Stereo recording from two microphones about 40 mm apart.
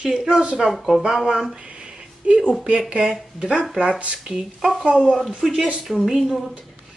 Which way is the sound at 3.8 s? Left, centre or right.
Right.